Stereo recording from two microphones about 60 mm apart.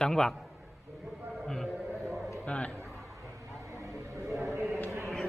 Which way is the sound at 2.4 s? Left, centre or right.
Left.